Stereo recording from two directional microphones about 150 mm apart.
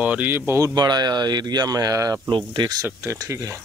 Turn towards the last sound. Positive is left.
turn(degrees=-20)  # may be behind; listen again after turning